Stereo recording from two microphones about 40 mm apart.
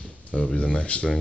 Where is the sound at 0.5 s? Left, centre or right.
Left.